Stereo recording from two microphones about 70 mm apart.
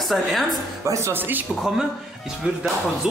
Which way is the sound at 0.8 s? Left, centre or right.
Right.